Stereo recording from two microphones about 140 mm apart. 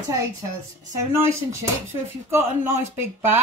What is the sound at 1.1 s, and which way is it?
Speech, 20° right (ahead or behind).